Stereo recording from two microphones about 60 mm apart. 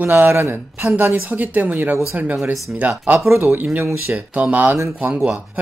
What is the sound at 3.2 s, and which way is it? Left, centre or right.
Speech, right.